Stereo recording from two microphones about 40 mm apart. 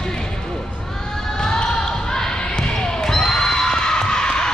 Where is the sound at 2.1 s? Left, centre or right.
Centre.